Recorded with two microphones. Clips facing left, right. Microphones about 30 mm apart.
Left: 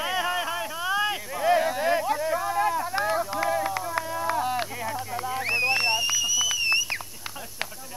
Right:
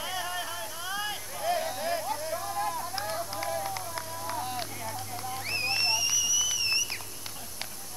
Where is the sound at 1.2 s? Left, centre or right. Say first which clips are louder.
Left 7 dB; left.